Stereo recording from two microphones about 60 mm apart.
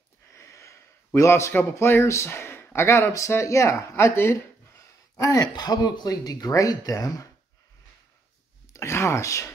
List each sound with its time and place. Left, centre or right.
0.3 s a sound: left
1.6 s speech: left
3.9 s speech: left
5.1 s speech: left
8.7 s speech: left